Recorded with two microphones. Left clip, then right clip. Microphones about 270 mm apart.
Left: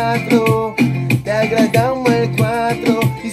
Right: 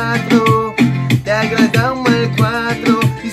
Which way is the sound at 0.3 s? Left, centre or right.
Right.